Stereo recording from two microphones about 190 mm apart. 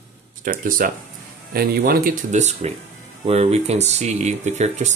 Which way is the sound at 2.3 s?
35° right (ahead or behind).